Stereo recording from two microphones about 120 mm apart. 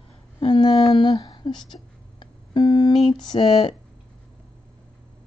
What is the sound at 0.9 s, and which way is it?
Music, 40° left (ahead or behind).